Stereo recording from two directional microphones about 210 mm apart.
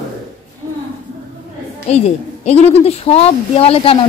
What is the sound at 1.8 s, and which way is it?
A man's voice, 30° left (ahead or behind).